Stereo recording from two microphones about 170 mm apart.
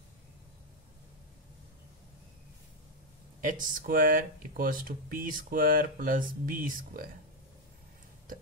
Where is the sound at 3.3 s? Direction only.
50° right (ahead or behind).